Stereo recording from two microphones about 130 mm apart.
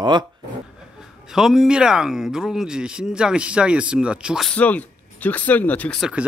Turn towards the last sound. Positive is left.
turn(degrees=10)  # may be behind; listen again after turning